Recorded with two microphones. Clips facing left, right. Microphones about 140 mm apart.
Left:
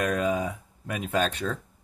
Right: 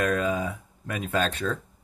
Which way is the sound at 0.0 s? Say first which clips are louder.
Even; 20° left (ahead or behind).